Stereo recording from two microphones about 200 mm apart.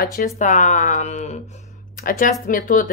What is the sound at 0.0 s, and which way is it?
Speech, 50° left (ahead or behind).